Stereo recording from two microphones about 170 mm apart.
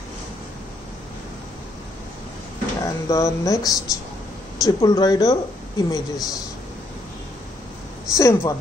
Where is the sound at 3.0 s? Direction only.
20° left (ahead or behind).